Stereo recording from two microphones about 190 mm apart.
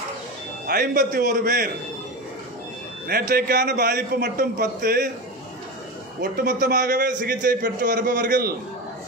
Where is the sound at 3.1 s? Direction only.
55° right (ahead or behind).